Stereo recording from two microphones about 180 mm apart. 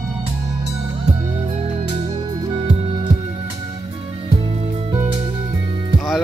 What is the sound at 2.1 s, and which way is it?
Music, 25° right (ahead or behind).